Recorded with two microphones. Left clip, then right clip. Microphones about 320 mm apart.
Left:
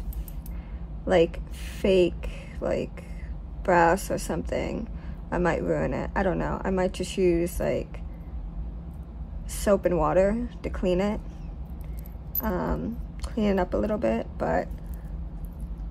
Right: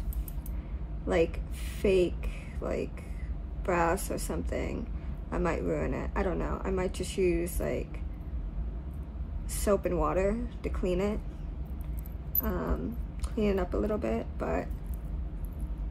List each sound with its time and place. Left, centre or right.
1.8 s a woman's voice: left
9.6 s a woman's voice: left
12.4 s a woman's voice: left